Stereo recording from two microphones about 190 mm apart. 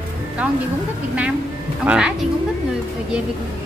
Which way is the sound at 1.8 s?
5° right (ahead or behind).